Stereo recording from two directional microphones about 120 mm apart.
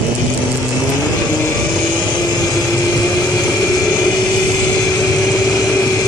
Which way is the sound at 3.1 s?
30° left (ahead or behind).